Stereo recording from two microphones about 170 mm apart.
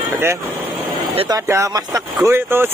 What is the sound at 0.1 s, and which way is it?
Speech, 15° right (ahead or behind).